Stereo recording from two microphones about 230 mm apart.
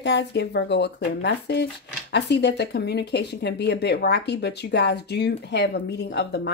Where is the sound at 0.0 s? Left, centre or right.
Left.